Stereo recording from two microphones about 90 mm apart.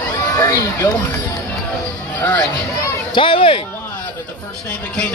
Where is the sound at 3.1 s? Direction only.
70° left (ahead or behind).